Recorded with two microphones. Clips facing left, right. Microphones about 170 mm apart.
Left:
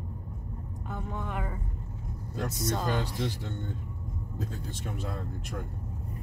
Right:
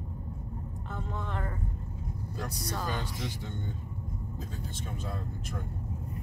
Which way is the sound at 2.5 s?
25° left (ahead or behind).